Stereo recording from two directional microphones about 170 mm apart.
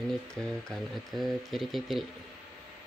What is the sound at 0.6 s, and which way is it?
Speech, centre (ahead or behind).